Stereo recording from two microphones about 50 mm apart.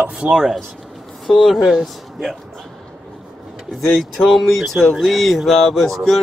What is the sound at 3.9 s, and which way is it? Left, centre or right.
Speech, centre.